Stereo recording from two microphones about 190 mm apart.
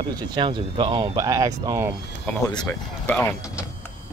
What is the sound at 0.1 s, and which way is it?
Speech, 25° right (ahead or behind).